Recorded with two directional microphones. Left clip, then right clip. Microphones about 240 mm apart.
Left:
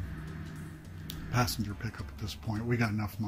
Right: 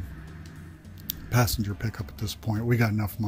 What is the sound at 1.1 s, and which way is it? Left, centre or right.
Speech, right.